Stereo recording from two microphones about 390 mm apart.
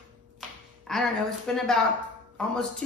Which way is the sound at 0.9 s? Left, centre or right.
Centre.